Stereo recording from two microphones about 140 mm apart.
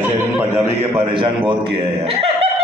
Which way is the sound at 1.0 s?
35° right (ahead or behind).